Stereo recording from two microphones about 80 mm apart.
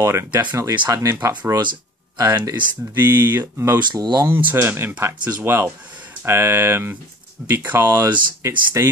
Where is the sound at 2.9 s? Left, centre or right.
Right.